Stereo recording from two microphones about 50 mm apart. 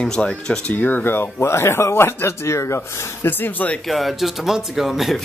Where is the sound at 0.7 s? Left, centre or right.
Left.